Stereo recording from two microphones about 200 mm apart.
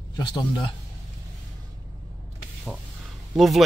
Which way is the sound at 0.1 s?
20° left (ahead or behind).